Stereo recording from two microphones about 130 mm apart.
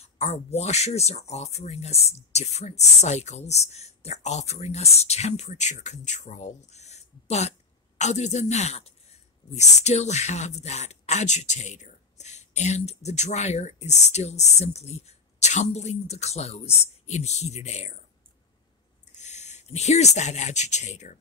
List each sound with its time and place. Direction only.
0.0 s speech: 55° left (ahead or behind)
19.1 s speech: 60° left (ahead or behind)